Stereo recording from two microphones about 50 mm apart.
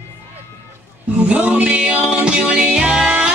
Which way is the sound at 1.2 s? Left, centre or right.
Right.